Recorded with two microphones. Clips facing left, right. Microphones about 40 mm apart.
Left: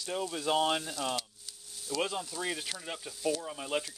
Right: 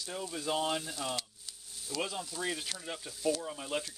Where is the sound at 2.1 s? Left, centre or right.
Centre.